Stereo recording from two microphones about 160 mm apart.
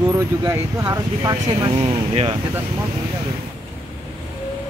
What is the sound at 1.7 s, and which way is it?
Speech, 40° right (ahead or behind).